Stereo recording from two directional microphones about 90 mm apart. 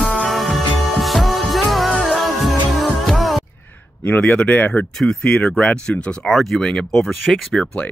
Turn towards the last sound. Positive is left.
turn(degrees=5)  # may be behind; listen again after turning